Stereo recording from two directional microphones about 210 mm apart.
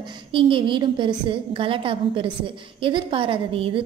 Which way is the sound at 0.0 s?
25° right (ahead or behind).